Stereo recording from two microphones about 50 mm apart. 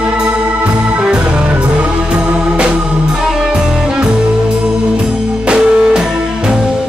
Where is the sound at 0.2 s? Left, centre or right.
Right.